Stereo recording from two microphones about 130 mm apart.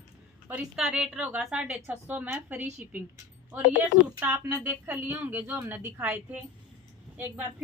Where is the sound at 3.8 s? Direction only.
10° right (ahead or behind).